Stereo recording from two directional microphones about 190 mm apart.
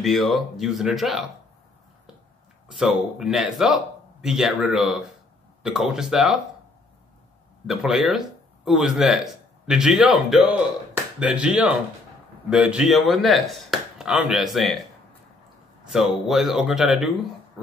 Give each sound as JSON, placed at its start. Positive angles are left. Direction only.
{"t": 0.0, "sound": "speech", "side_deg": 0}
{"t": 2.8, "sound": "speech", "side_deg": 0}
{"t": 7.6, "sound": "speech", "side_deg": 0}
{"t": 15.9, "sound": "speech", "side_deg": 0}